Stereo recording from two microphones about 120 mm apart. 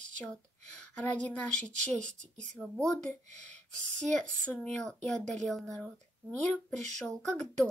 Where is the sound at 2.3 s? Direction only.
90° right.